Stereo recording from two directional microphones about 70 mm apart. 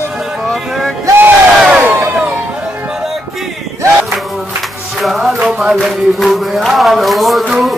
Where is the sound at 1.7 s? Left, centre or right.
Centre.